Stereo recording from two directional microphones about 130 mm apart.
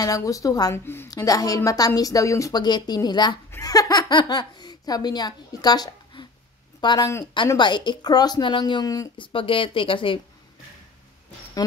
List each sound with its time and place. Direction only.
0.0 s a woman's voice: 25° left (ahead or behind); by 10.2 s 40° left (ahead or behind)